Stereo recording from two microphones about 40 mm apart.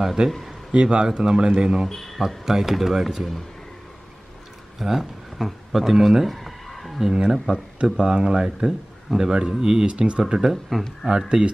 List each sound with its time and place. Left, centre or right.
0.0 s a man's voice: centre
0.7 s speech: right
1.9 s speech: centre
2.1 s speech: centre
4.7 s a sound: centre
7.2 s speech: centre
7.8 s speech: right
8.4 s speech: centre
10.7 s speech: centre
11.1 s speech: right